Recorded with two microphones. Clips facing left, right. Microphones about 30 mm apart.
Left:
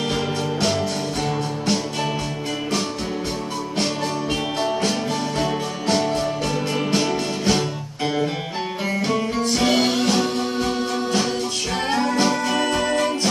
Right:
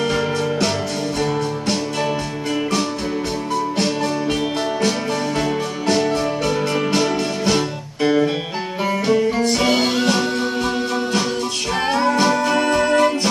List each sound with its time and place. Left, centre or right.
7.0 s music: centre
9.5 s music: centre
11.9 s music: centre